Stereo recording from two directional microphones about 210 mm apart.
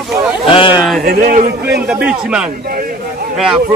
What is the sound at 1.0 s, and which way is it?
Speech, 45° right (ahead or behind).